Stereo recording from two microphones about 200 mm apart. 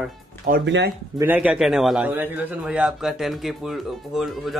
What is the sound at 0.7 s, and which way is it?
Speech, 60° right (ahead or behind).